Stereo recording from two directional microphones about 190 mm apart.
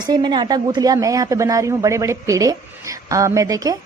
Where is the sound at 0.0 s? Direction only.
25° right (ahead or behind).